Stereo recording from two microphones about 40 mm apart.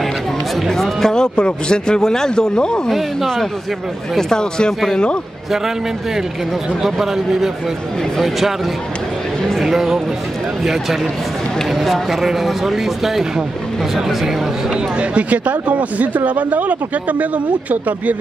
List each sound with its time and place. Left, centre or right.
0.7 s music: centre
1.1 s a man's voice: centre
4.2 s a man's voice: centre
6.8 s speech: centre
9.6 s speech: centre
15.0 s speech: right